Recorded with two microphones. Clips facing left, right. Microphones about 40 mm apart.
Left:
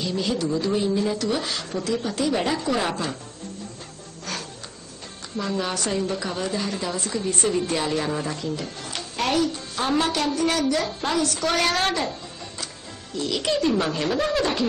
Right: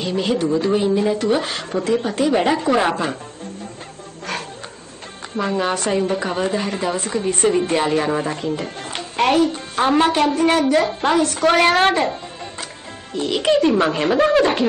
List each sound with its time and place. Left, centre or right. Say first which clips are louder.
0.0 s a woman's voice: right 5 dB; right
5.4 s a woman's voice: right 6 dB; right